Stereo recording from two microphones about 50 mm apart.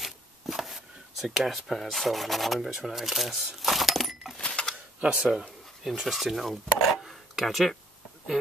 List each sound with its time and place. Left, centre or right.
0.0 s a sound: centre
1.3 s speech: centre
4.4 s cash register: centre
5.0 s speech: centre
5.9 s speech: centre